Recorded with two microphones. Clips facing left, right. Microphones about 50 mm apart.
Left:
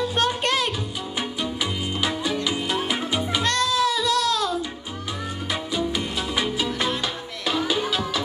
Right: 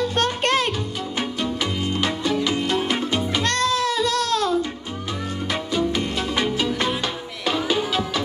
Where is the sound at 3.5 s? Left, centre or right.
Right.